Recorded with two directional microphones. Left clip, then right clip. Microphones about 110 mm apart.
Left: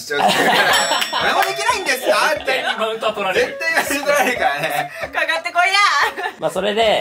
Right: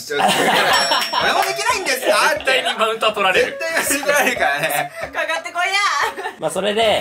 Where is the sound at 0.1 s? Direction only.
Centre (ahead or behind).